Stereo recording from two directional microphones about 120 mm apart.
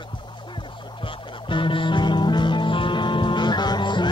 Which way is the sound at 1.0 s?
45° left (ahead or behind).